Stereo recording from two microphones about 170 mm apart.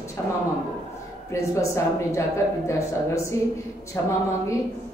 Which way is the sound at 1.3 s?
15° left (ahead or behind).